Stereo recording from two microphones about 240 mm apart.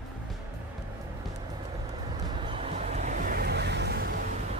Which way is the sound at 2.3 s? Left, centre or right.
Right.